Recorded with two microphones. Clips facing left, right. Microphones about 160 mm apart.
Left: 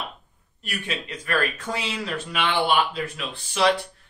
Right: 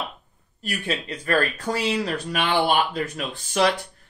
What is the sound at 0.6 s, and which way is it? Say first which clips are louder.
Speech: right 3 dB; 35° right (ahead or behind).